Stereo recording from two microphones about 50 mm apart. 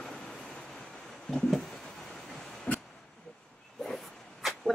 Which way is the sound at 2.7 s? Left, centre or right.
Left.